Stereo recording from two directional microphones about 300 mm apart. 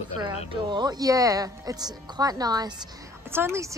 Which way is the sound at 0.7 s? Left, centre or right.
Centre.